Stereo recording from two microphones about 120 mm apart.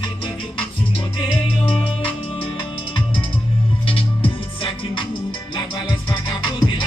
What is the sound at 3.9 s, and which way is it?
Music, 45° left (ahead or behind).